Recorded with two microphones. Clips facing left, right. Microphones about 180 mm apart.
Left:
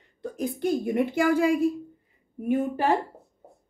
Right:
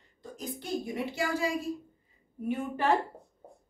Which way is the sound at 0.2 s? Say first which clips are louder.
Left 12 dB; 60° left (ahead or behind).